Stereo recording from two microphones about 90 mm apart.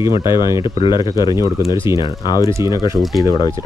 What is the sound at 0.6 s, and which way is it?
Speech, 60° left (ahead or behind).